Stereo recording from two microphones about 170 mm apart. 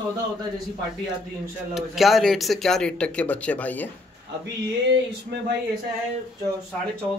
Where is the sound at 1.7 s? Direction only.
Centre (ahead or behind).